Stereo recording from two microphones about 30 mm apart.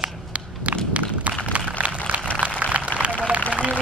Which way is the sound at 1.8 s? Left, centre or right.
Right.